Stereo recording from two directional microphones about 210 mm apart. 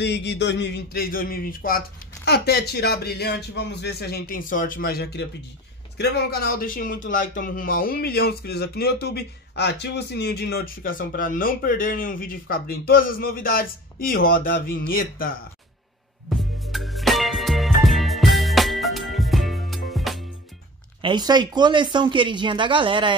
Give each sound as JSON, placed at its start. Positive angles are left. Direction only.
{"t": 0.0, "sound": "speech", "side_deg": 55}
{"t": 16.3, "sound": "music", "side_deg": 0}
{"t": 21.0, "sound": "speech", "side_deg": -20}